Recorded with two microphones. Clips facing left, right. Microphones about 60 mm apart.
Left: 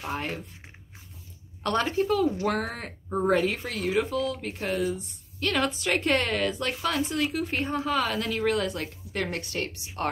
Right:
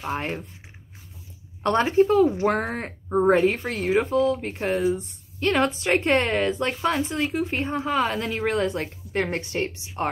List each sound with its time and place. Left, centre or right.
0.1 s a woman's voice: right
1.6 s a woman's voice: right